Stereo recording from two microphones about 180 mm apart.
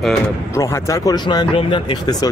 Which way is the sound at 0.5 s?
15° left (ahead or behind).